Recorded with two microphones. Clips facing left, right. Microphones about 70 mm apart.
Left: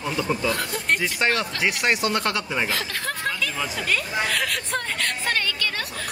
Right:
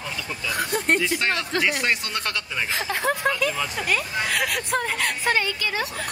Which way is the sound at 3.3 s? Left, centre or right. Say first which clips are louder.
Right 3 dB; centre.